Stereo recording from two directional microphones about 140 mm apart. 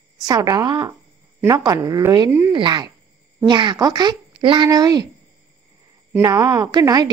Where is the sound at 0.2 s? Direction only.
25° right (ahead or behind).